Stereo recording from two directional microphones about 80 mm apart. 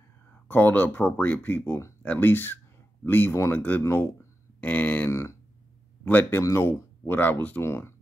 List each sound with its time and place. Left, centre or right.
0.5 s speech: left
3.8 s a sound: left
4.6 s speech: left
5.1 s speech: left
6.0 s speech: left
6.4 s speech: left